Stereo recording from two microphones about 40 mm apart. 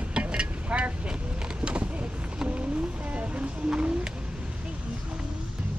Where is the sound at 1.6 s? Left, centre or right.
Right.